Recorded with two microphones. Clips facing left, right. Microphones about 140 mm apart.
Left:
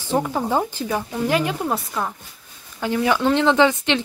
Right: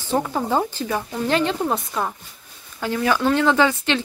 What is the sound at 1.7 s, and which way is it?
Speech, 5° right (ahead or behind).